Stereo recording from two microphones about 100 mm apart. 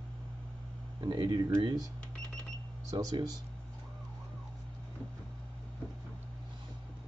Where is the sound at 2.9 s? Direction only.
35° right (ahead or behind).